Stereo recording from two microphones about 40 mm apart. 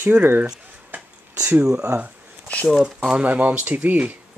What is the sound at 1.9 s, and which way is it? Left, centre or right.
Speech, right.